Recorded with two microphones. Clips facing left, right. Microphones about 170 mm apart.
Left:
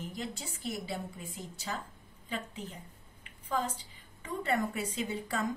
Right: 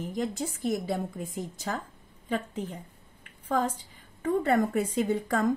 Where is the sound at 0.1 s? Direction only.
50° right (ahead or behind).